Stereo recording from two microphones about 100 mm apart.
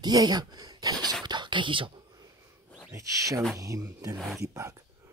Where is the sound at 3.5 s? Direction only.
35° right (ahead or behind).